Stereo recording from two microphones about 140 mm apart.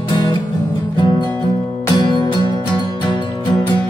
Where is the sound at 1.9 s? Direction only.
35° left (ahead or behind).